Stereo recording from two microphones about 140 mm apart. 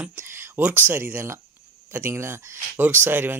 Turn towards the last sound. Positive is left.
turn(degrees=-15)  # may be behind; listen again after turning